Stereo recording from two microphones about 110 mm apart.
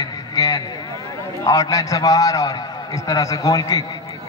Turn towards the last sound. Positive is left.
turn(degrees=35)  # may be behind; listen again after turning